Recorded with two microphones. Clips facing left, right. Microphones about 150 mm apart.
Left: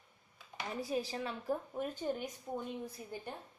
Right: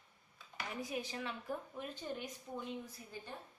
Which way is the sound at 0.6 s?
35° left (ahead or behind).